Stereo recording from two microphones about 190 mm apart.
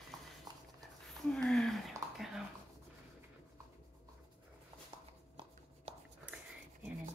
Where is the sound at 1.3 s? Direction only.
5° left (ahead or behind).